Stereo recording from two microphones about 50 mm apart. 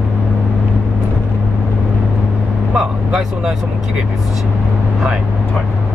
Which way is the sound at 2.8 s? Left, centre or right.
Centre.